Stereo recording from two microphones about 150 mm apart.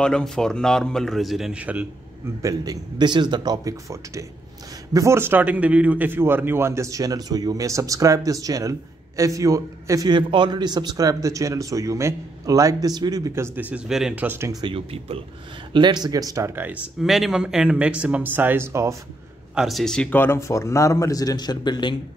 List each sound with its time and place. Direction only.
0.0 s speech: 5° left (ahead or behind)
2.4 s a man's voice: 25° right (ahead or behind)
14.6 s a man's voice: 40° right (ahead or behind); by 16.7 s 15° right (ahead or behind)
17.0 s speech: centre (ahead or behind); by 18.9 s 20° right (ahead or behind)
19.5 s speech: centre (ahead or behind); by 21.9 s 30° left (ahead or behind)